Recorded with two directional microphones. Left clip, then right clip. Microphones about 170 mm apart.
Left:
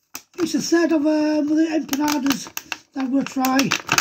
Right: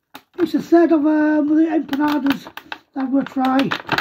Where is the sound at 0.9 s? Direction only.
5° left (ahead or behind).